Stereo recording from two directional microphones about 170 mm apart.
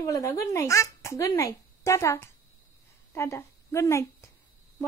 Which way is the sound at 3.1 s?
15° left (ahead or behind).